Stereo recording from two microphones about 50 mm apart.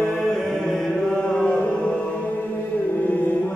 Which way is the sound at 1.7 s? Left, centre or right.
Left.